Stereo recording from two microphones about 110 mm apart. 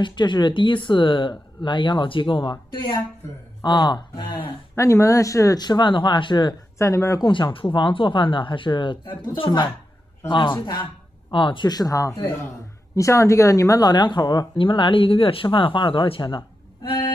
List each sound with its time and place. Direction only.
0.0 s speech: 45° left (ahead or behind)
3.6 s speech: 45° left (ahead or behind)
4.7 s speech: 25° left (ahead or behind); by 6.5 s 45° left (ahead or behind)
6.8 s speech: 25° left (ahead or behind)
7.2 s speech: 45° left (ahead or behind)
14.6 s speech: 50° left (ahead or behind)